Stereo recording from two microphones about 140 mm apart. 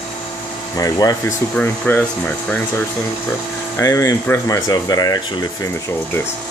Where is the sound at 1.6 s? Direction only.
10° left (ahead or behind).